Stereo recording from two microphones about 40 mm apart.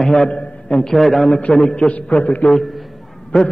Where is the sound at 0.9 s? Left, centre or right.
Centre.